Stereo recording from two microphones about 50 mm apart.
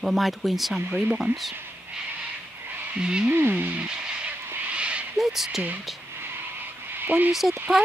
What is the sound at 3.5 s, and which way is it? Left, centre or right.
Speech, right.